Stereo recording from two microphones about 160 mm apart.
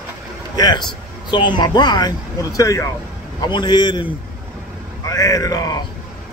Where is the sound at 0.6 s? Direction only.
25° left (ahead or behind).